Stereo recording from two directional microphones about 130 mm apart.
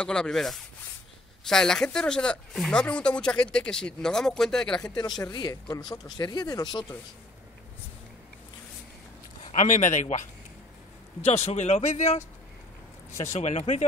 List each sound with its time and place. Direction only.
0.0 s speech: 5° left (ahead or behind)
4.9 s speech: 30° left (ahead or behind)
9.4 s speech: 65° left (ahead or behind)
11.2 s speech: 55° left (ahead or behind)
13.2 s speech: 65° left (ahead or behind)